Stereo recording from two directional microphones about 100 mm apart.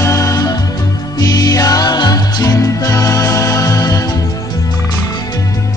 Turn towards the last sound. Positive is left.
turn(degrees=35)  # may be behind; listen again after turning